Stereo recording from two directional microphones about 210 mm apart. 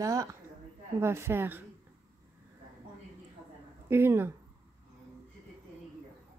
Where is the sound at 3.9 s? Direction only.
10° right (ahead or behind).